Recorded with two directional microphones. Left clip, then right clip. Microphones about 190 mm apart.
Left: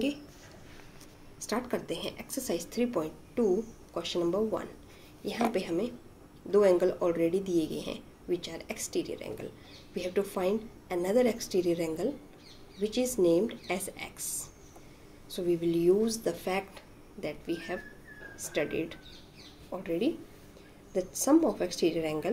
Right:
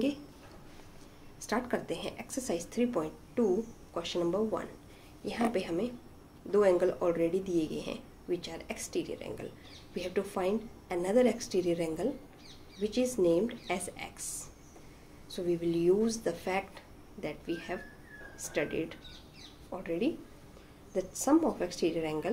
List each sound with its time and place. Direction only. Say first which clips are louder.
1.4 s a woman's voice: even; 5° left (ahead or behind)